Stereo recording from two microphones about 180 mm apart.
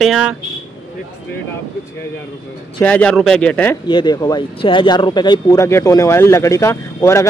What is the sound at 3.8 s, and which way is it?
Speech, 25° left (ahead or behind).